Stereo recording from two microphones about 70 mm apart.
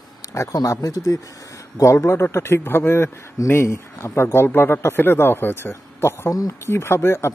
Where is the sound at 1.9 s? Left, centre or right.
Left.